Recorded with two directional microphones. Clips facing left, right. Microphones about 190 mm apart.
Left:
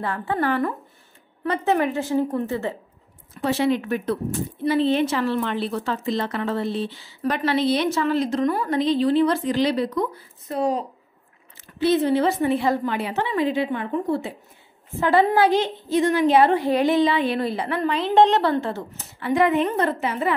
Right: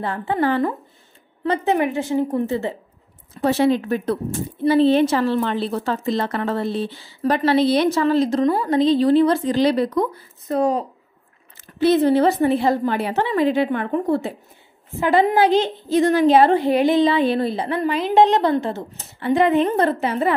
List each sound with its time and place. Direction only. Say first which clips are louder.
0.0 s a woman's voice: right 3 dB; 20° right (ahead or behind)
3.3 s a woman's voice: right 4 dB; 40° right (ahead or behind)
7.2 s a woman's voice: right 4 dB; 35° right (ahead or behind)
13.6 s a woman's voice: right 4 dB; 60° right (ahead or behind)
15.0 s a woman's voice: right 2 dB; 15° right (ahead or behind)
15.9 s a woman's voice: right 3 dB; 40° right (ahead or behind)
16.6 s a woman's voice: right 3 dB; 20° right (ahead or behind)
17.1 s a woman's voice: right 4 dB; 30° right (ahead or behind)
17.8 s a woman's voice: right 1 dB; 10° right (ahead or behind); by 20.3 s 35° right (ahead or behind)